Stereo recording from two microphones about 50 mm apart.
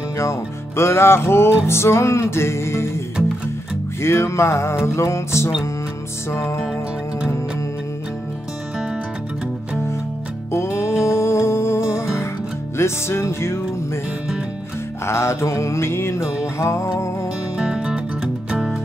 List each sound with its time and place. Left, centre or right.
0.2 s music: left
4.0 s music: left
10.5 s music: left
15.0 s music: left
17.6 s music: centre